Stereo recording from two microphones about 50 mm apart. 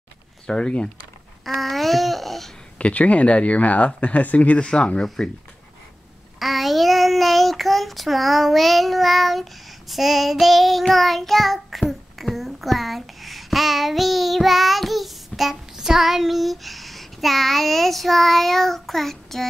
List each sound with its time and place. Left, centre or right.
0.5 s speech: centre
1.4 s babbling: centre
2.8 s speech: left
5.0 s speech: centre
6.4 s child singing: centre